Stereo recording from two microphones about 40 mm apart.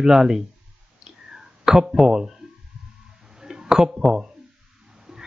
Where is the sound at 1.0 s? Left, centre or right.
Centre.